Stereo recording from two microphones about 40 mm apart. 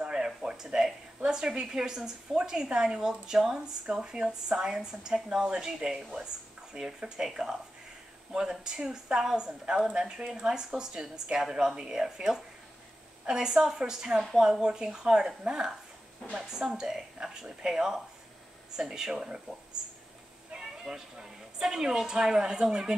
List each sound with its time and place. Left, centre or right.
0.0 s a sound: centre
2.3 s speech: centre
8.3 s speech: centre
20.5 s speech: centre